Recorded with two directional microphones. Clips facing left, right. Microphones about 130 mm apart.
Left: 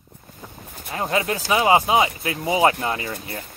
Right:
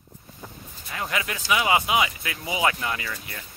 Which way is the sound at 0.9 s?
25° left (ahead or behind).